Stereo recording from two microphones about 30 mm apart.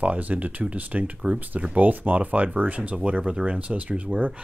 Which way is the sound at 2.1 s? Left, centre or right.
Right.